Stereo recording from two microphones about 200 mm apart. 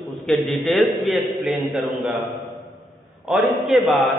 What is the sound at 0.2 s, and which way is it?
A man's voice, centre (ahead or behind).